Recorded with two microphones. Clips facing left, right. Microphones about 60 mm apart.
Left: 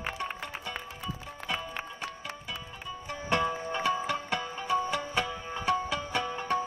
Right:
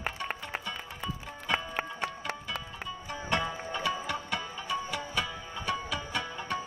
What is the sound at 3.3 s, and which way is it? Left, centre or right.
Music, left.